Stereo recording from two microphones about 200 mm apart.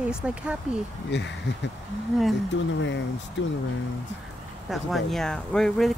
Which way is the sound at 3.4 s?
65° left (ahead or behind).